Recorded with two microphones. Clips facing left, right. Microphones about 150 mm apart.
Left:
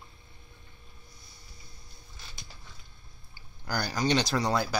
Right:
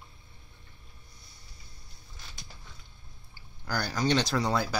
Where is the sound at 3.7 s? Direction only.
10° left (ahead or behind).